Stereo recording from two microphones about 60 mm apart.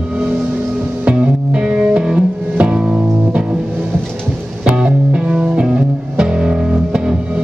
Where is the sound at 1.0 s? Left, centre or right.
Centre.